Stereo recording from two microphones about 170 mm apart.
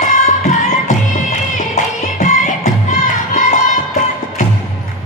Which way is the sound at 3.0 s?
50° left (ahead or behind).